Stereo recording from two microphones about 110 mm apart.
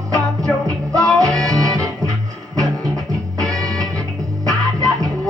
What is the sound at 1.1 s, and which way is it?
Music, 35° right (ahead or behind).